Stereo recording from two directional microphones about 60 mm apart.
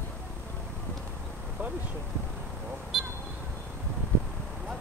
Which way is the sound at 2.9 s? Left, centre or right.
Centre.